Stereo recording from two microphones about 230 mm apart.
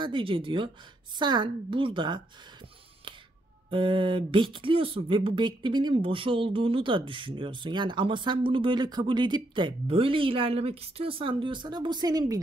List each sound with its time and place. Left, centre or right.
0.0 s speech: right
3.7 s speech: right